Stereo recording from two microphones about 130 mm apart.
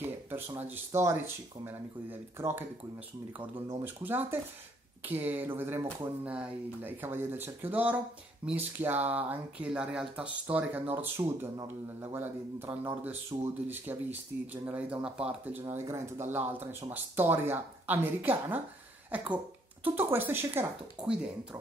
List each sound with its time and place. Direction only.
0.0 s speech: 15° right (ahead or behind)
3.8 s speech: 15° right (ahead or behind)